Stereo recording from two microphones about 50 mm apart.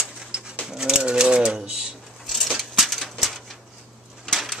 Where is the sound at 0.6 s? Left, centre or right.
Centre.